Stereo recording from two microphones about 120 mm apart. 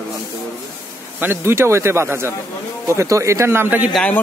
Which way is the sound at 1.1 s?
20° right (ahead or behind).